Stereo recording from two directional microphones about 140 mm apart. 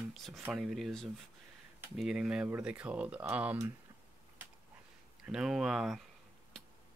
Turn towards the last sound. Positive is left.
turn(degrees=0)  # may be behind; listen again after turning